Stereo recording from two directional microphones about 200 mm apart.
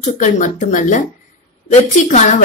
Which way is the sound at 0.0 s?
40° left (ahead or behind).